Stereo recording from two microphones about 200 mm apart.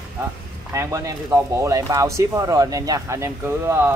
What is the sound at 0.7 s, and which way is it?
Speech, 15° right (ahead or behind).